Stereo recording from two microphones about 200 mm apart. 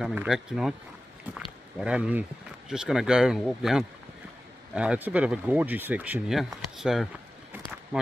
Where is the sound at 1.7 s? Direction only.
5° right (ahead or behind).